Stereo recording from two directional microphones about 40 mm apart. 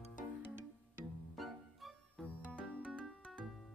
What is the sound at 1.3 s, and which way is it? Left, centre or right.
Music, centre.